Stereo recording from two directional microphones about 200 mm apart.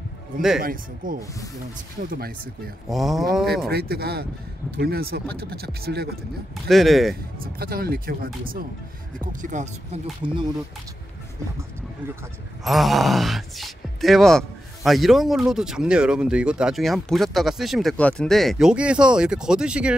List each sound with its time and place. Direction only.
0.6 s speech: 45° right (ahead or behind)
2.9 s speech: centre (ahead or behind)
3.7 s speech: 50° right (ahead or behind)
6.7 s speech: centre (ahead or behind)
7.5 s speech: 50° right (ahead or behind)
10.2 s speech: 25° right (ahead or behind)
12.6 s speech: centre (ahead or behind)